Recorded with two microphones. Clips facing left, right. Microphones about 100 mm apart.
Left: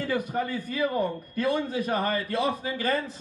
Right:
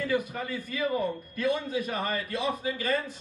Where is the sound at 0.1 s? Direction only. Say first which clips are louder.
Left 2 dB; 40° left (ahead or behind).